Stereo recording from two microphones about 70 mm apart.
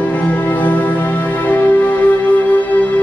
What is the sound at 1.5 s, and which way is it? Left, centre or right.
Music, left.